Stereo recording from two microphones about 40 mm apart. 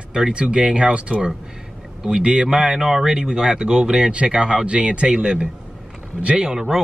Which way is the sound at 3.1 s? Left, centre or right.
Right.